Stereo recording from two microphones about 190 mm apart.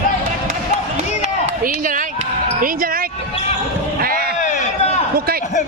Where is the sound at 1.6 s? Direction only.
45° right (ahead or behind).